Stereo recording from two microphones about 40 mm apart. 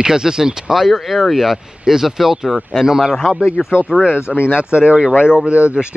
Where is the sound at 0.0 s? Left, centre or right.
Centre.